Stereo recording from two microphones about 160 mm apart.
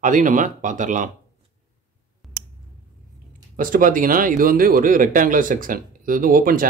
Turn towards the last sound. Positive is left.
turn(degrees=-60)  # may be behind; listen again after turning